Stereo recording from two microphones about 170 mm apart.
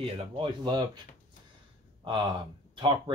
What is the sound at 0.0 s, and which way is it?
Speech, 30° right (ahead or behind).